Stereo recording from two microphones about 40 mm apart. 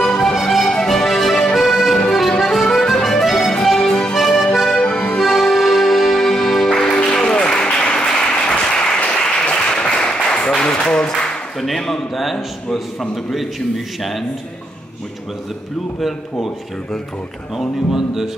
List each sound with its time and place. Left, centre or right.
0.2 s music: centre
2.7 s accordion: centre
3.6 s music: centre
4.8 s accordion: left
5.2 s music: centre
7.0 s applause: left
11.6 s a man's voice: centre
16.0 s a man's voice: centre
17.9 s speech: centre